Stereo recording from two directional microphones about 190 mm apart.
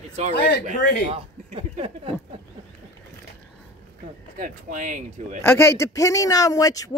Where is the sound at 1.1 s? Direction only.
30° right (ahead or behind).